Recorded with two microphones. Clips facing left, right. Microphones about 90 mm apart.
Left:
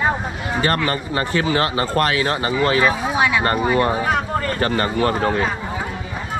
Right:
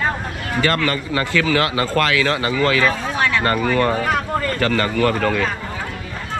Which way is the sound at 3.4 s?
25° left (ahead or behind).